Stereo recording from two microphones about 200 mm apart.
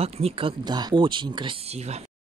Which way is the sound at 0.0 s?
30° right (ahead or behind).